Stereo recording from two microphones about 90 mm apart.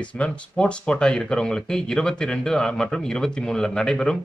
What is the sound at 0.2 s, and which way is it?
Speech, 10° left (ahead or behind).